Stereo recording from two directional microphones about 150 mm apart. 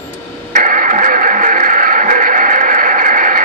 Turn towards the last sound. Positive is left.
turn(degrees=-60)  # may be behind; listen again after turning